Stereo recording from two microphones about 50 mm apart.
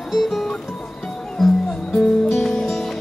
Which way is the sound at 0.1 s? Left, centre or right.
Centre.